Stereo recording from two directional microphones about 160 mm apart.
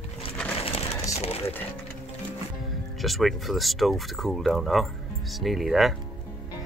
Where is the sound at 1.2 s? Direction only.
40° left (ahead or behind).